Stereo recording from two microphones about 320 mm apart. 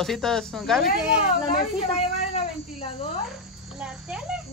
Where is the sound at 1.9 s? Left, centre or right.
Centre.